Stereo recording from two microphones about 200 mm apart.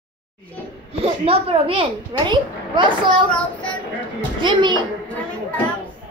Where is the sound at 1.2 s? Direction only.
25° right (ahead or behind).